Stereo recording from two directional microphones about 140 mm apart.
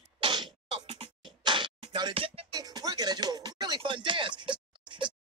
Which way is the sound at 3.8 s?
35° right (ahead or behind).